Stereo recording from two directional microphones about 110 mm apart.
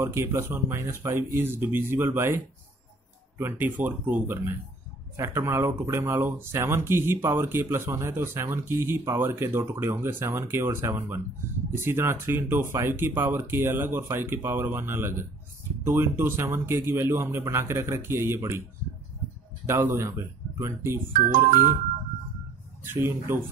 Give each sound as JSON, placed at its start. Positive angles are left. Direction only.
{"t": 0.0, "sound": "speech", "side_deg": -25}
{"t": 19.6, "sound": "speech", "side_deg": -25}
{"t": 22.8, "sound": "speech", "side_deg": -20}